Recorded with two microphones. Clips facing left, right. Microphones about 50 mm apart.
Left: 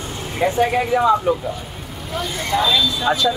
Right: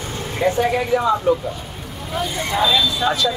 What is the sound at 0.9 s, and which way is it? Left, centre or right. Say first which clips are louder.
Speech: left 2 dB; left.